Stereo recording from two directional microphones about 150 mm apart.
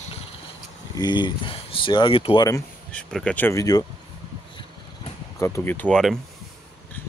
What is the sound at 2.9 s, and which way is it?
Speech, 5° left (ahead or behind).